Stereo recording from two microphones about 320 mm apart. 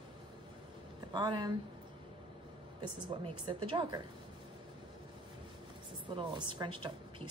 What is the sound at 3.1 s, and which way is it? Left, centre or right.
Speech, centre.